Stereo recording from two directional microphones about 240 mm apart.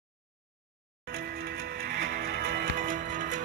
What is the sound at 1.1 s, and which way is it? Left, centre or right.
Music, right.